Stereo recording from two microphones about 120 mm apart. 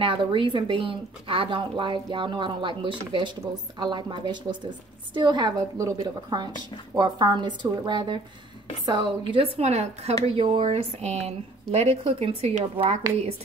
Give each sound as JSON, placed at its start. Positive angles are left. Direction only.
{"t": 0.0, "sound": "a woman's voice", "side_deg": -45}
{"t": 9.6, "sound": "speech", "side_deg": -65}
{"t": 10.7, "sound": "speech", "side_deg": -60}